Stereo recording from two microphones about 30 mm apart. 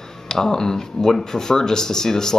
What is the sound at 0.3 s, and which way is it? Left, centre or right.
Speech, centre.